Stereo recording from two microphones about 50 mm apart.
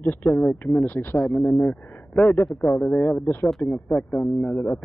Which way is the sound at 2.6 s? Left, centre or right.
Left.